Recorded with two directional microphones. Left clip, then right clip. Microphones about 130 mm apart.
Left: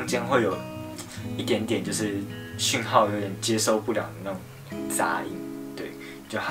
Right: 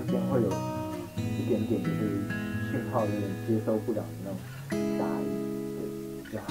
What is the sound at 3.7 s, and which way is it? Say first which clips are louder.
Speech: left 5 dB; 25° right (ahead or behind).